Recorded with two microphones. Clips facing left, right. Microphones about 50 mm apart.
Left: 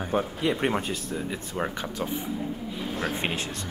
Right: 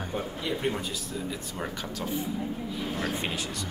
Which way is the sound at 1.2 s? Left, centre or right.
Left.